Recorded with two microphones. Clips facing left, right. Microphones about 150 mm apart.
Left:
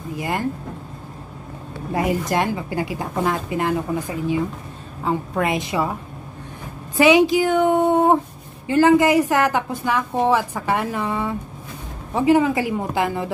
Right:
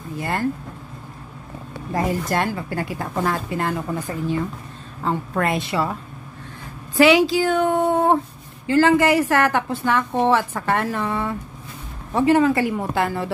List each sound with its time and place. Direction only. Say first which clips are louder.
0.2 s a woman's voice: right 1 dB; 15° left (ahead or behind)
2.0 s a woman's voice: left 1 dB; 15° left (ahead or behind)
7.0 s a woman's voice: left 1 dB; 20° left (ahead or behind)